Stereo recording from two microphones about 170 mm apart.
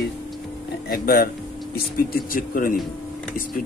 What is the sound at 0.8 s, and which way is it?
A man's voice, 65° left (ahead or behind).